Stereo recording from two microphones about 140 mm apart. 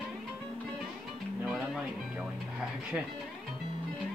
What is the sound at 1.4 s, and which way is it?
Music, 5° right (ahead or behind).